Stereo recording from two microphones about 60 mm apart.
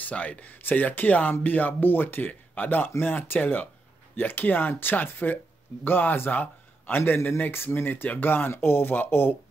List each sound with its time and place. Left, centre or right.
0.0 s a man's voice: left